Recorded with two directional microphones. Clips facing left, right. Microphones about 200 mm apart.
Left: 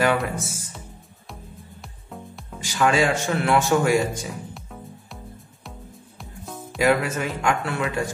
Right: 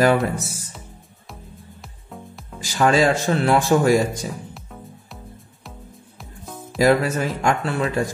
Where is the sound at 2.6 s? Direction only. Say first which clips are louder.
Right 3 dB; 35° right (ahead or behind).